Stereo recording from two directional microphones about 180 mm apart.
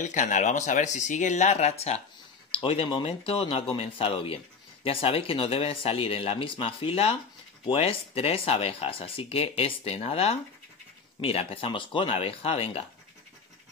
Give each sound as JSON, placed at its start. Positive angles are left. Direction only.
{"t": 0.0, "sound": "speech", "side_deg": 45}